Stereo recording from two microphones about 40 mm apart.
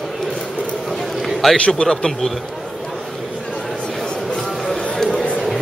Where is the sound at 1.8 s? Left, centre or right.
Centre.